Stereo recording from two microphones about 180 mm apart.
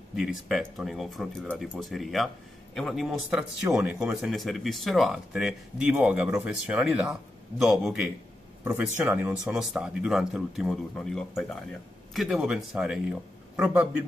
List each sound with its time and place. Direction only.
0.1 s speech: 5° right (ahead or behind)